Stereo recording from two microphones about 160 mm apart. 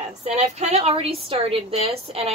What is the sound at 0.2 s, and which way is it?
A woman's voice, 40° right (ahead or behind).